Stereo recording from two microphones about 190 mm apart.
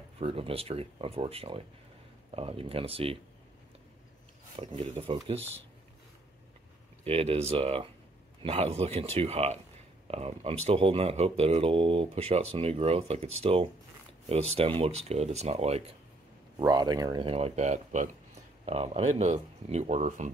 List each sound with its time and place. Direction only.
0.2 s speech: 30° right (ahead or behind)
4.6 s speech: 30° right (ahead or behind)
7.1 s speech: 30° right (ahead or behind)
16.5 s speech: 20° right (ahead or behind); by 20.2 s 40° right (ahead or behind)